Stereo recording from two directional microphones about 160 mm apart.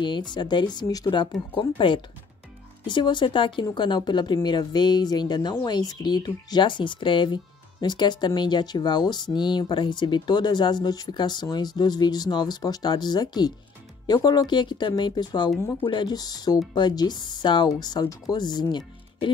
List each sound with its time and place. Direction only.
0.0 s speech: 30° left (ahead or behind)